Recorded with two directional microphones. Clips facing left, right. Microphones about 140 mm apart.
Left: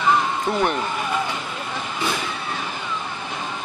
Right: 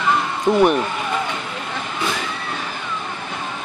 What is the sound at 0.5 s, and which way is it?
Speech, 20° right (ahead or behind).